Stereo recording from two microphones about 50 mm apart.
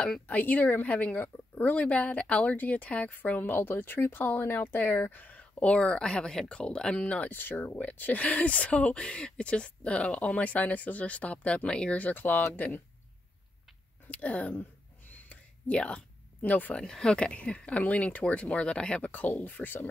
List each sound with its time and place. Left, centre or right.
0.3 s speech: left
3.3 s speech: left; by 7.0 s centre
7.0 s speech: left
7.2 s speech: left
12.0 s speech: left
14.0 s speech: left
14.5 s a sound: left
16.3 s speech: left
16.7 s speech: centre
19.1 s speech: left